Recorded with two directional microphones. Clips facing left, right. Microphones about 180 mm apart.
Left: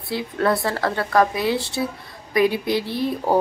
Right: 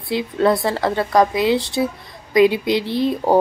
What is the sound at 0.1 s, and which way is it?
A woman's voice, 20° right (ahead or behind).